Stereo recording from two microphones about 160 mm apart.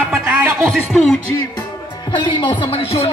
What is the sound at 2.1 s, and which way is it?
Music, 30° left (ahead or behind).